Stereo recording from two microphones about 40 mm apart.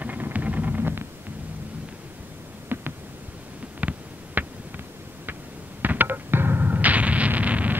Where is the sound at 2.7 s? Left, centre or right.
Right.